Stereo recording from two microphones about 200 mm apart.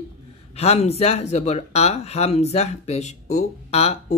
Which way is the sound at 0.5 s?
30° left (ahead or behind).